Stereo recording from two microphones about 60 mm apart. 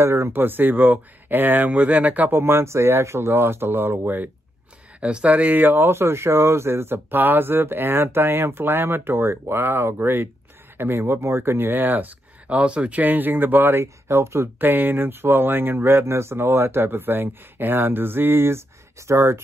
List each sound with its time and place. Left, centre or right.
0.0 s speech: right
5.0 s speech: right
13.0 s speech: right